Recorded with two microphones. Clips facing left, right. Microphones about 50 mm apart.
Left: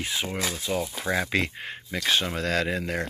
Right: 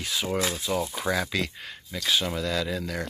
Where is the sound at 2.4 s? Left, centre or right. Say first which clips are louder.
Left 2 dB; left.